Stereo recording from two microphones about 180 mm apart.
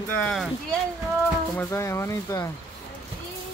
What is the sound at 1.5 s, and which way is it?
Speech, 15° left (ahead or behind).